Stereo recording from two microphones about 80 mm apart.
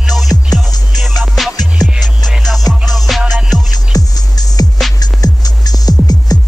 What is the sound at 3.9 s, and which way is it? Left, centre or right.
Music, left.